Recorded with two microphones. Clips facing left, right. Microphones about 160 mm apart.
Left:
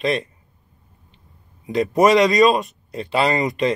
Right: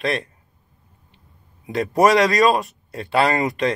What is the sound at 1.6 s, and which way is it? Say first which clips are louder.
Speech: left 1 dB; centre (ahead or behind).